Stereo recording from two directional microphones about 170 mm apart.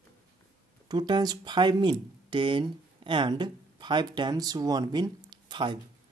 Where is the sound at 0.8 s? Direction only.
25° right (ahead or behind).